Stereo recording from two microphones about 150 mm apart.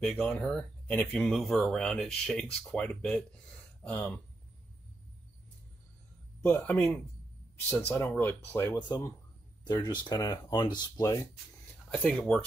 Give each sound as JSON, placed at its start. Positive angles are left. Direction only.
{"t": 0.0, "sound": "speech", "side_deg": 5}
{"t": 6.4, "sound": "speech", "side_deg": 10}
{"t": 9.7, "sound": "speech", "side_deg": 30}
{"t": 11.9, "sound": "speech", "side_deg": 5}